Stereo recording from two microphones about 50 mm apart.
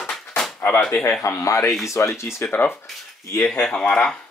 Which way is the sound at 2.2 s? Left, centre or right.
Left.